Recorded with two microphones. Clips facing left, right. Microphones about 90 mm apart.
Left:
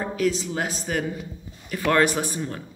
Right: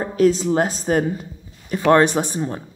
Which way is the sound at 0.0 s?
35° right (ahead or behind).